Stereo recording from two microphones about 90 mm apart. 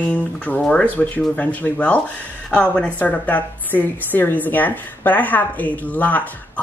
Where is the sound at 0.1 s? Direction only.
15° left (ahead or behind).